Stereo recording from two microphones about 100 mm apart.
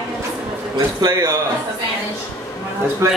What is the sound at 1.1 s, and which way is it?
Speech, 25° right (ahead or behind).